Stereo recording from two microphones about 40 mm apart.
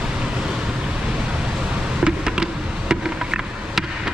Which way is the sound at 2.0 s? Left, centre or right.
Centre.